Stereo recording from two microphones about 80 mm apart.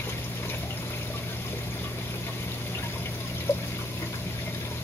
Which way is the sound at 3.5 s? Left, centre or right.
Left.